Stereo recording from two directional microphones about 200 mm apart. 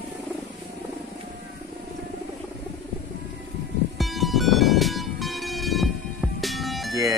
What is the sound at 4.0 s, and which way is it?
Music, centre (ahead or behind).